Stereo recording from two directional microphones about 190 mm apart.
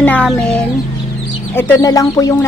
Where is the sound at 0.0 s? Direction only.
5° left (ahead or behind).